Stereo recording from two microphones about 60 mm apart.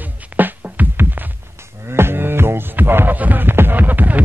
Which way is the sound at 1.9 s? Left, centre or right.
Right.